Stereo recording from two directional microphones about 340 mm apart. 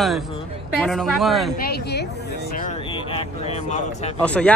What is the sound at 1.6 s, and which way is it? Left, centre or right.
Speech, left.